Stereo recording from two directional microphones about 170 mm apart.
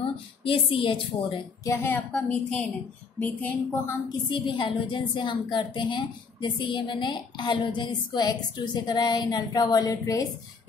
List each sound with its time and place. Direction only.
0.0 s speech: 30° left (ahead or behind)
1.6 s a woman's voice: 15° left (ahead or behind)
4.3 s a woman's voice: 25° left (ahead or behind)